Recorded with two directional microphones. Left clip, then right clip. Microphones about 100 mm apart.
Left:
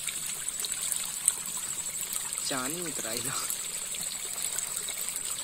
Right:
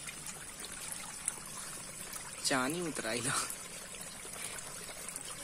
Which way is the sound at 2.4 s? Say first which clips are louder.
Right 2 dB; 20° right (ahead or behind).